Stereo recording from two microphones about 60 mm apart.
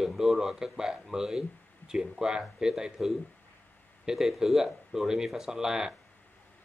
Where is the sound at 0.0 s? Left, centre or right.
Centre.